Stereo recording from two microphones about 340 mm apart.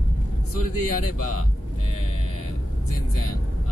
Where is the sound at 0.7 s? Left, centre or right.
Left.